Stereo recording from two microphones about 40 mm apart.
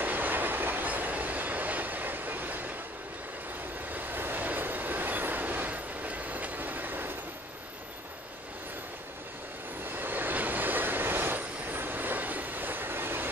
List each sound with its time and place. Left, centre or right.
0.0 s train: right
0.8 s train: right
3.9 s train: right
9.8 s train: right